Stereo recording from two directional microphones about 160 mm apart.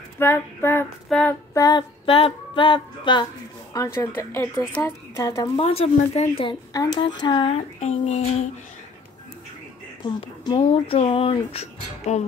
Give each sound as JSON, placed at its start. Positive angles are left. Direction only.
{"t": 0.2, "sound": "female singing", "side_deg": 15}
{"t": 1.0, "sound": "child singing", "side_deg": 0}
{"t": 1.5, "sound": "speech", "side_deg": 25}
{"t": 3.7, "sound": "speech", "side_deg": 20}
{"t": 5.6, "sound": "speech", "side_deg": 40}
{"t": 7.8, "sound": "a sound", "side_deg": 50}
{"t": 10.0, "sound": "speech", "side_deg": 30}